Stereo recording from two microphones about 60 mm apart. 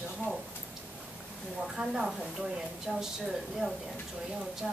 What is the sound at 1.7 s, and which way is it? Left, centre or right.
A woman's voice, centre.